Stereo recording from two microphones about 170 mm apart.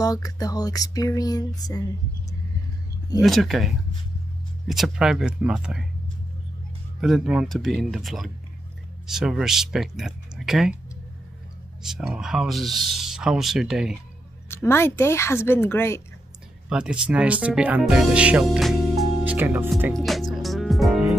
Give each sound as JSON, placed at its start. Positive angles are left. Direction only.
{"t": 0.0, "sound": "a sound", "side_deg": 20}
{"t": 3.2, "sound": "speech", "side_deg": 0}
{"t": 7.0, "sound": "speech", "side_deg": 0}
{"t": 11.8, "sound": "speech", "side_deg": -5}
{"t": 14.5, "sound": "speech", "side_deg": 15}
{"t": 16.6, "sound": "speech", "side_deg": -5}
{"t": 20.0, "sound": "music", "side_deg": 0}